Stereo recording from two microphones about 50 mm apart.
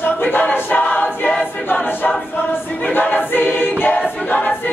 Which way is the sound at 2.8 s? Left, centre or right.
Left.